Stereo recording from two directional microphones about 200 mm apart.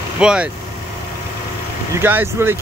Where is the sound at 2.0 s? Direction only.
10° right (ahead or behind).